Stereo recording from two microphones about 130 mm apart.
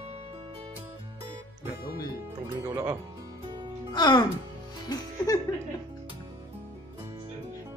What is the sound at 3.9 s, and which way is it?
Speech, 35° left (ahead or behind).